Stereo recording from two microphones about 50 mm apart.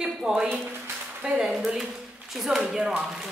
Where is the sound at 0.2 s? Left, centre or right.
Centre.